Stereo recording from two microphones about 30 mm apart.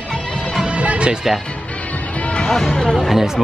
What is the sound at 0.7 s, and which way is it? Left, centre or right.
Music, right.